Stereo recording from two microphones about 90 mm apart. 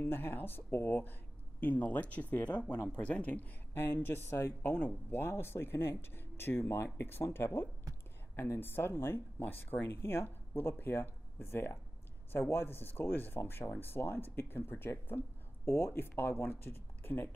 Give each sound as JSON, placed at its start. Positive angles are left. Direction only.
{"t": 0.0, "sound": "speech", "side_deg": 25}